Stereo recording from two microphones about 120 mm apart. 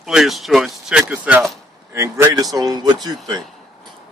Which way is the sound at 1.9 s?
25° right (ahead or behind).